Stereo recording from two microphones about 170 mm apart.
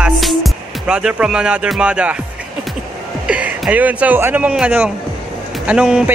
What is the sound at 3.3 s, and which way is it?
Speech, 5° right (ahead or behind).